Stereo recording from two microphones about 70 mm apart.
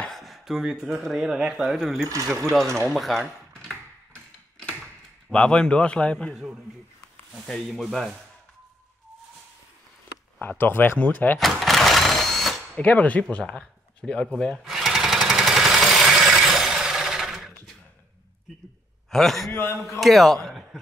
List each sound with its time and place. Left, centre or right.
0.1 s chopping: centre
0.9 s speech: centre
2.0 s speech: right
2.5 s speech: centre
3.0 s a sound: centre
5.3 s a man's voice: centre
7.4 s speech: centre
10.6 s speech: left
11.3 s a sound: centre
12.7 s speech: centre
14.6 s jackhammer: centre
19.0 s a man's voice: centre
19.5 s a man's voice: left
20.0 s speech: centre